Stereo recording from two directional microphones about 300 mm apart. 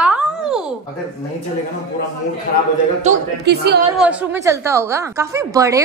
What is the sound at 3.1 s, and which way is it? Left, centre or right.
Speech, right.